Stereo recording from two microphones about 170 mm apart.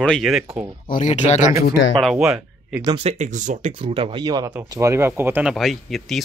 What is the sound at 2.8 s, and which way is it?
Speech, 30° right (ahead or behind).